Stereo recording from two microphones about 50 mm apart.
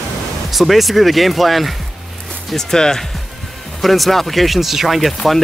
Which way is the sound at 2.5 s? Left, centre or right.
Centre.